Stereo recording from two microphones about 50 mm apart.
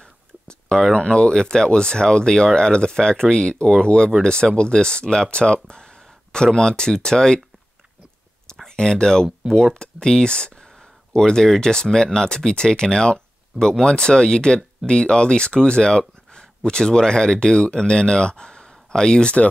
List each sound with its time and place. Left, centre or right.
0.0 s a sound: centre
0.9 s speech: centre
8.6 s speech: centre